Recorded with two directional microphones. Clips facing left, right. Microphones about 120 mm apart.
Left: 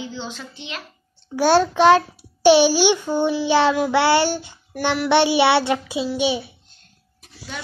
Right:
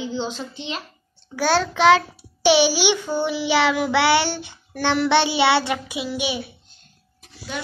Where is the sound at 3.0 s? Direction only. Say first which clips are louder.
Left 3 dB; 20° left (ahead or behind).